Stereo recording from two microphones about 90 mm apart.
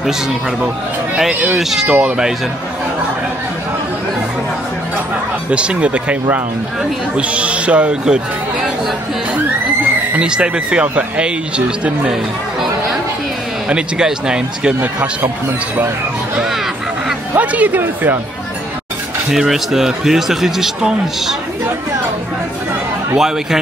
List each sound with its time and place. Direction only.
1.3 s speech: 15° right (ahead or behind)
1.6 s speech: 5° right (ahead or behind)
5.5 s speech: 10° right (ahead or behind)
10.1 s speech: 10° right (ahead or behind)
13.7 s speech: 10° right (ahead or behind)
16.3 s speech: 5° right (ahead or behind)
17.4 s speech: 15° right (ahead or behind)
19.3 s speech: 5° right (ahead or behind)
23.1 s speech: 5° right (ahead or behind)